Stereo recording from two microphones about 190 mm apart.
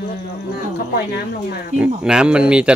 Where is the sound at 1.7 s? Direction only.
5° right (ahead or behind).